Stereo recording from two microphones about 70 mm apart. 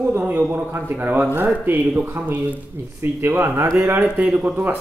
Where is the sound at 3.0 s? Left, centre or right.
Right.